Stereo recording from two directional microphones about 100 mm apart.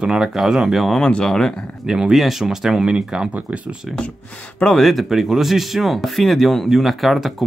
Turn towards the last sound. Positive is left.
turn(degrees=0)  # may be behind; listen again after turning